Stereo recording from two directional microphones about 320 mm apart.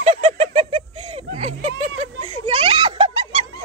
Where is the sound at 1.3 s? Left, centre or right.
Centre.